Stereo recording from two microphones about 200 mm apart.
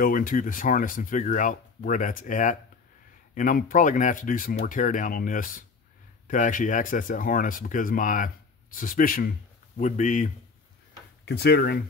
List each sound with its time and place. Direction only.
0.0 s speech: 45° left (ahead or behind)
11.2 s speech: 55° left (ahead or behind)